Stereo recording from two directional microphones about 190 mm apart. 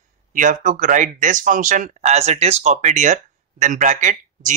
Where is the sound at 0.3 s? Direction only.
40° right (ahead or behind).